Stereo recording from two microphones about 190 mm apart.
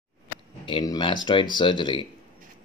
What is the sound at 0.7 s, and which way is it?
Speech, 25° left (ahead or behind).